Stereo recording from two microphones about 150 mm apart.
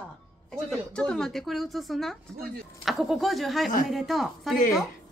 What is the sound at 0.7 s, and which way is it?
A woman's voice, 5° left (ahead or behind).